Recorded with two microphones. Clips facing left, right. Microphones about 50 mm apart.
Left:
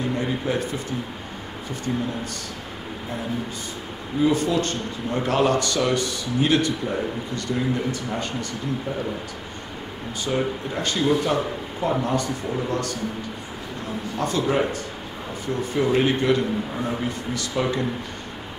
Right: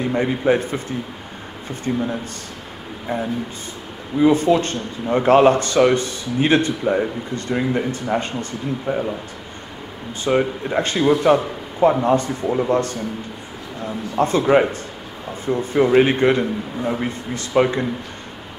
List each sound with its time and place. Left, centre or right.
0.1 s speech: right
1.9 s speech: right
4.2 s speech: right
10.2 s speech: right
14.1 s speech: right